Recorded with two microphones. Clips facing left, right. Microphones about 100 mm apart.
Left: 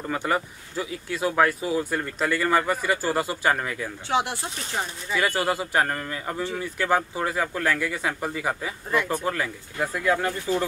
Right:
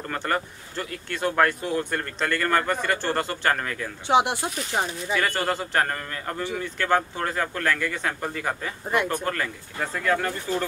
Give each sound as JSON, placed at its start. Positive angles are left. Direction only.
{"t": 0.0, "sound": "speech", "side_deg": 5}
{"t": 4.1, "sound": "speech", "side_deg": -20}
{"t": 5.1, "sound": "speech", "side_deg": 10}